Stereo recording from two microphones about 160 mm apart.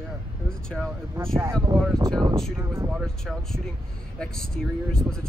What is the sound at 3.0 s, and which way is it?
Speech, centre (ahead or behind).